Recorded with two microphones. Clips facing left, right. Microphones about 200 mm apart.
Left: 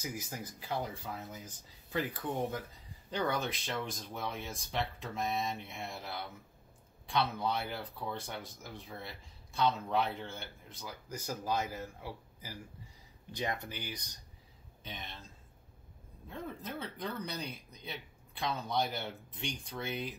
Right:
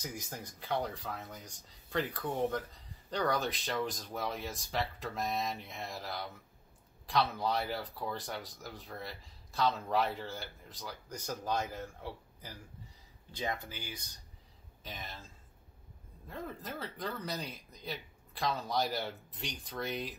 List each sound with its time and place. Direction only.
0.0 s speech: 5° left (ahead or behind)
13.7 s speech: 20° left (ahead or behind)
14.8 s speech: centre (ahead or behind)
16.3 s speech: centre (ahead or behind)